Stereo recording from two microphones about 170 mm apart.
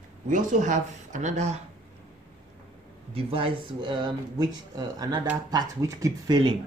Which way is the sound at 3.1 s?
35° right (ahead or behind).